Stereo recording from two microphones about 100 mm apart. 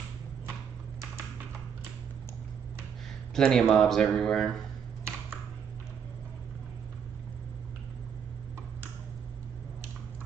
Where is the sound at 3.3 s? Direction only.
5° left (ahead or behind).